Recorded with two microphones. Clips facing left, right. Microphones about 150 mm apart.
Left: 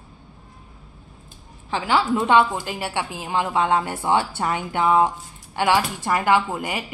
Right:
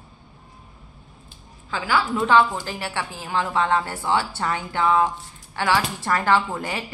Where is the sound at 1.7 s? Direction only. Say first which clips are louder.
Left 3 dB; 25° left (ahead or behind).